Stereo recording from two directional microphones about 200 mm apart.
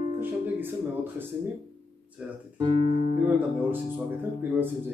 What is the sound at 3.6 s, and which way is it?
Speech, 10° right (ahead or behind).